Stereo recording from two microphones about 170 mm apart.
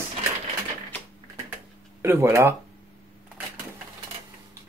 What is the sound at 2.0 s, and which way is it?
Speech, 15° right (ahead or behind).